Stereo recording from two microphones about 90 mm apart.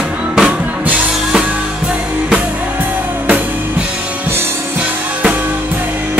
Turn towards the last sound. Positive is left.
turn(degrees=-20)  # may be behind; listen again after turning